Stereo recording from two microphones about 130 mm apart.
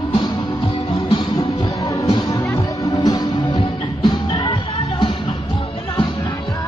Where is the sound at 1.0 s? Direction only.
35° left (ahead or behind).